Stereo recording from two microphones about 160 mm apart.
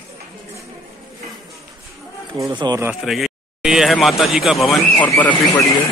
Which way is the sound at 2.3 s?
25° right (ahead or behind).